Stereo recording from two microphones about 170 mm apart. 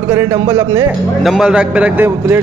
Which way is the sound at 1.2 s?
Centre (ahead or behind).